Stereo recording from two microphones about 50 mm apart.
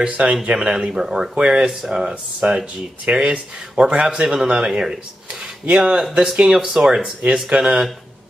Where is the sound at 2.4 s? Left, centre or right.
Right.